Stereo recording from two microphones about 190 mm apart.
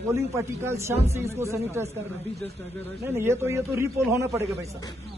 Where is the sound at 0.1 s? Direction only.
15° right (ahead or behind).